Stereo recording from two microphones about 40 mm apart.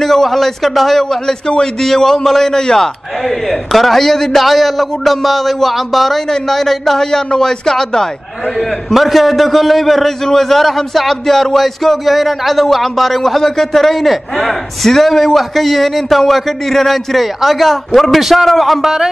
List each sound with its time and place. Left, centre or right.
0.0 s a man's voice: centre
1.2 s a man's voice: centre
8.5 s a man's voice: centre